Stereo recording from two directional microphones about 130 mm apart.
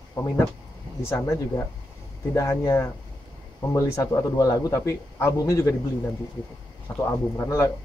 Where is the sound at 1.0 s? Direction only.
20° left (ahead or behind).